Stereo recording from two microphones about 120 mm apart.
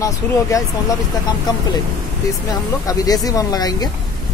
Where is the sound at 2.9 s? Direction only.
30° left (ahead or behind).